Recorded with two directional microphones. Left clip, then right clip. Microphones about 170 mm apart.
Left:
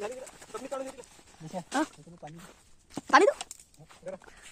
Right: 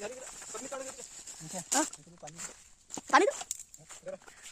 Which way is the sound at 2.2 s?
Centre (ahead or behind).